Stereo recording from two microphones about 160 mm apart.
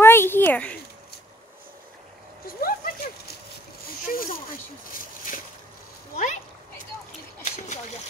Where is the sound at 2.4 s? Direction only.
65° left (ahead or behind).